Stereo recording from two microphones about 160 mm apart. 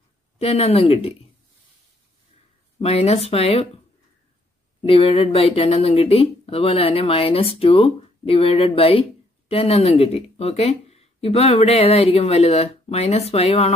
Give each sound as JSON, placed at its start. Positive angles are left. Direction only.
{"t": 0.4, "sound": "speech", "side_deg": 40}
{"t": 2.8, "sound": "speech", "side_deg": 40}
{"t": 4.8, "sound": "speech", "side_deg": 35}